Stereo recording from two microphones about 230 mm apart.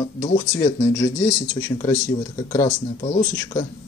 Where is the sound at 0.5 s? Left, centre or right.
Centre.